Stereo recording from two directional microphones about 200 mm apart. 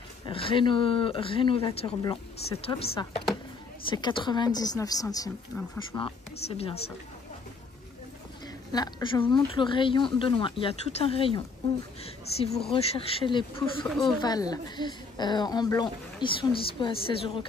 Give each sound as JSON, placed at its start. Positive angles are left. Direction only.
{"t": 0.3, "sound": "speech", "side_deg": 25}
{"t": 5.5, "sound": "speech", "side_deg": 5}
{"t": 5.9, "sound": "speech", "side_deg": 15}
{"t": 6.4, "sound": "speech", "side_deg": 30}
{"t": 8.7, "sound": "speech", "side_deg": 20}